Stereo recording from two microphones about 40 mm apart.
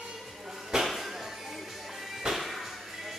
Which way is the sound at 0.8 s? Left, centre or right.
Centre.